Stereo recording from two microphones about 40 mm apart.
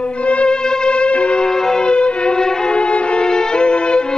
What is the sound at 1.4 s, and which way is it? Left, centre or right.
Music, centre.